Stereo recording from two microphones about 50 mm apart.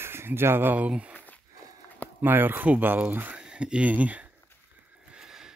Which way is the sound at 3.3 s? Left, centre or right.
Centre.